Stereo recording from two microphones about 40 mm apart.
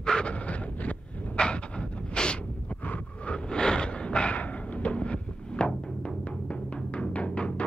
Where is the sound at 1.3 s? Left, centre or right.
Left.